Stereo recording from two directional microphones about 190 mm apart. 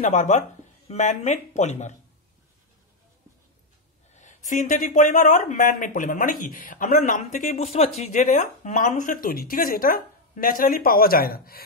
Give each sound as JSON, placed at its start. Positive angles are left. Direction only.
{"t": 0.0, "sound": "speech", "side_deg": 40}
{"t": 4.1, "sound": "speech", "side_deg": 40}